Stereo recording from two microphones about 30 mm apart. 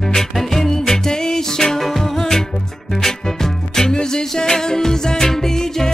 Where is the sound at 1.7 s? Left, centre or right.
Centre.